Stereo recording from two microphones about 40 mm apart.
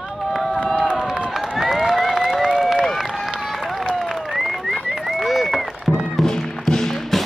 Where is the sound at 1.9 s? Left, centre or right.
Centre.